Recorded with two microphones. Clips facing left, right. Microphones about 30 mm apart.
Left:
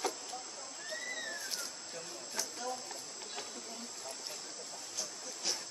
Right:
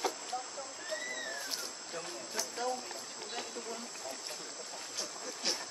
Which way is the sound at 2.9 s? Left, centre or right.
Centre.